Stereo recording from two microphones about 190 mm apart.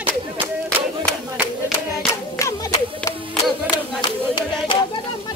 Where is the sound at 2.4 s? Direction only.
15° left (ahead or behind).